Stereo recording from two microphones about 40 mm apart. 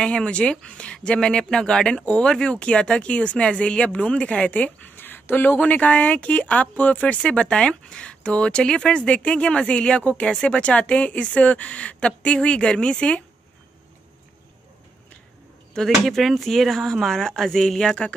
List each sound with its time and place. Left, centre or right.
0.0 s speech: left
2.0 s speech: left
4.5 s a woman's voice: left
4.8 s a sound: left
5.6 s a woman's voice: left
7.3 s a woman's voice: left
16.0 s speech: centre